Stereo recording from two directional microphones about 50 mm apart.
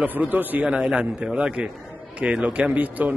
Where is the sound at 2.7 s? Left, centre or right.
Right.